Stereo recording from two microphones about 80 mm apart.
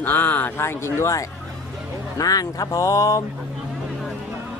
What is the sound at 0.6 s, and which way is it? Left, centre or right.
Speech, left.